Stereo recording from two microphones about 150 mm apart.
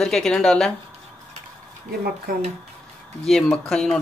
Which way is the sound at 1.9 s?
75° right (ahead or behind).